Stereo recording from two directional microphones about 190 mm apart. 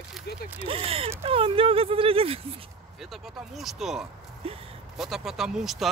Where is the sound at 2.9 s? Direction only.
Centre (ahead or behind).